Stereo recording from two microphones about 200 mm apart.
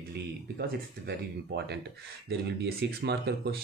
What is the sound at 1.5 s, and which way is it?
Speech, 55° right (ahead or behind).